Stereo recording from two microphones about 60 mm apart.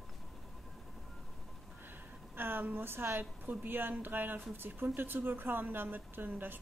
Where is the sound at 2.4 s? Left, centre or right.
Right.